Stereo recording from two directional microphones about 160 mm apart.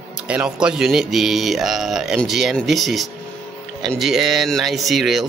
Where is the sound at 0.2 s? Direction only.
5° right (ahead or behind).